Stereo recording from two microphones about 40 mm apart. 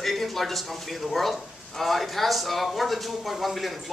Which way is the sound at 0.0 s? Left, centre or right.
Centre.